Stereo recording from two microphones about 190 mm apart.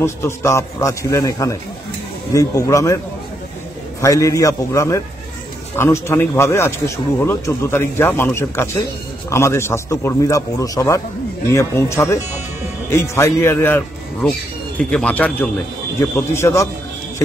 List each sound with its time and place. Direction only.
0.0 s speech: 15° left (ahead or behind)
4.0 s speech: 15° left (ahead or behind)